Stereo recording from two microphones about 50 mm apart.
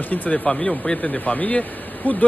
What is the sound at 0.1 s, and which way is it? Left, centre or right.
Speech, left.